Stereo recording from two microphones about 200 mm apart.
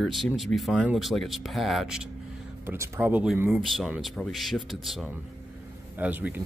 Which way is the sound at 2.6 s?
15° right (ahead or behind).